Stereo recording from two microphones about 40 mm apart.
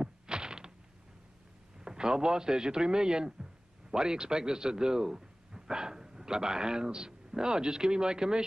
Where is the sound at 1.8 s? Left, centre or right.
Centre.